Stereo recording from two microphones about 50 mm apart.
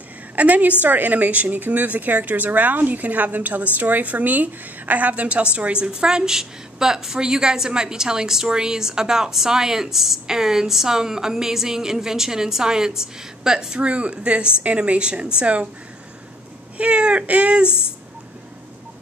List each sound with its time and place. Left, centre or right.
0.4 s a woman's voice: right; by 13.7 s centre
13.7 s a woman's voice: right
16.7 s a woman's voice: right